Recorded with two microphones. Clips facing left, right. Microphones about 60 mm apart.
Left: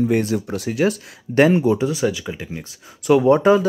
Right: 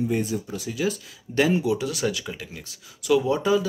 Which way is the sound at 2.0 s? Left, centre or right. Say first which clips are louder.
Left 5 dB; centre.